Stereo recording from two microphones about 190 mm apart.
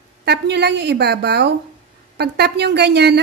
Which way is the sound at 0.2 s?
60° right (ahead or behind).